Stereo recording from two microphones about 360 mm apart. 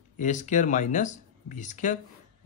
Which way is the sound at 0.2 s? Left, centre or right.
Left.